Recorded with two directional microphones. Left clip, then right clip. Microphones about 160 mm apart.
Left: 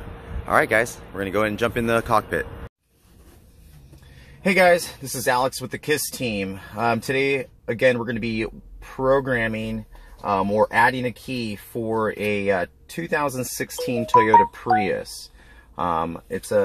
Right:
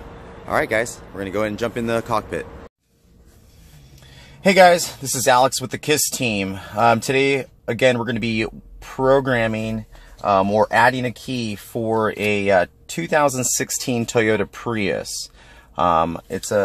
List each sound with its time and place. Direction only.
0.5 s speech: 10° left (ahead or behind)
4.5 s speech: 30° right (ahead or behind)